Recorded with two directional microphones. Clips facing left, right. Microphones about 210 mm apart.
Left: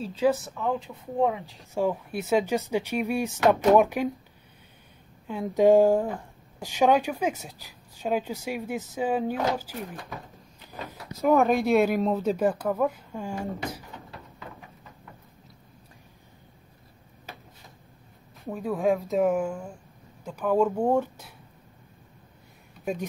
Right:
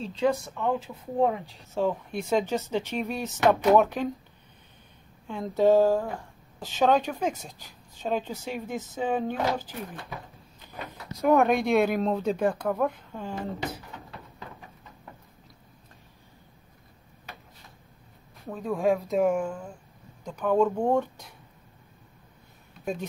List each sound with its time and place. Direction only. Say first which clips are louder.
0.0 s a woman's voice: left 2 dB; 5° left (ahead or behind)
5.2 s a woman's voice: left 2 dB; 10° left (ahead or behind)
11.1 s speech: even; centre (ahead or behind)
18.5 s a woman's voice: even; 5° left (ahead or behind)